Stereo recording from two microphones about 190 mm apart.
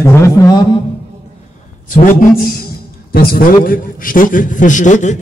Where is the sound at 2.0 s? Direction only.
45° left (ahead or behind).